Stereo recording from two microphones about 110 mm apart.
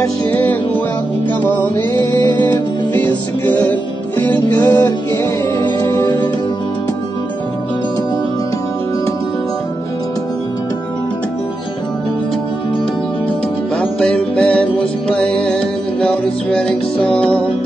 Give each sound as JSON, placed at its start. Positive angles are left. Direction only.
{"t": 0.3, "sound": "music", "side_deg": 15}
{"t": 4.2, "sound": "music", "side_deg": 15}
{"t": 13.7, "sound": "music", "side_deg": 10}